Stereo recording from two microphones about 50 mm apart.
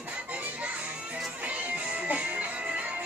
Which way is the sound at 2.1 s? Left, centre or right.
Right.